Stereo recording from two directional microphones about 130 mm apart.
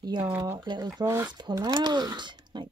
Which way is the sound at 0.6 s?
30° right (ahead or behind).